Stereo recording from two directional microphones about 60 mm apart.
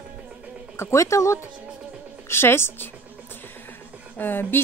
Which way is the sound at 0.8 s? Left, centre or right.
Left.